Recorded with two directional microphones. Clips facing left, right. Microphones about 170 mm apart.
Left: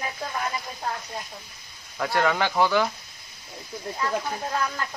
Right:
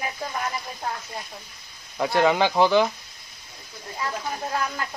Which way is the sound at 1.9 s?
20° right (ahead or behind).